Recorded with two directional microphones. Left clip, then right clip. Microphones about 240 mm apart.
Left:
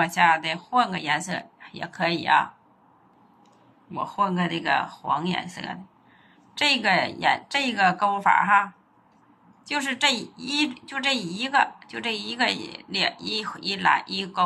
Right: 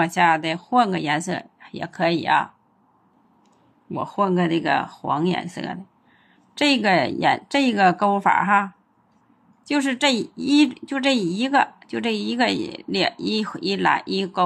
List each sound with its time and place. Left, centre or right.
0.0 s a woman's voice: right
3.9 s a woman's voice: right